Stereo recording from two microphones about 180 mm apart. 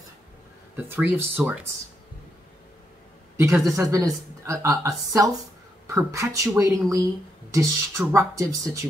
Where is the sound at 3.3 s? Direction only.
15° right (ahead or behind).